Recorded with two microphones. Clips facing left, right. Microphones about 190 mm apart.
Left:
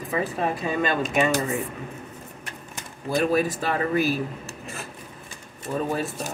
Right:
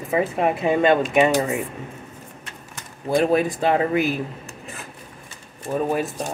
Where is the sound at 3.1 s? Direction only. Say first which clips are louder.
Right 3 dB; 25° right (ahead or behind).